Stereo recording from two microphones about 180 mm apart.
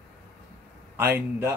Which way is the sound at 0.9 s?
10° right (ahead or behind).